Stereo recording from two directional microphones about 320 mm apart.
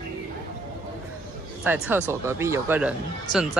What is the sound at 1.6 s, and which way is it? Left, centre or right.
Speech, centre.